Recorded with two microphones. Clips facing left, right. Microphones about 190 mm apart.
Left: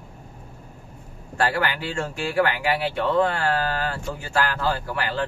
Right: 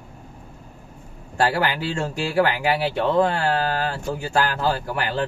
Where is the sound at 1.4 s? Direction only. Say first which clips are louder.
Right 2 dB; 25° right (ahead or behind).